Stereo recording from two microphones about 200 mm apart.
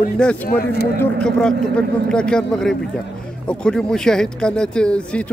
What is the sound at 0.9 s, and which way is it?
Speech, 5° left (ahead or behind).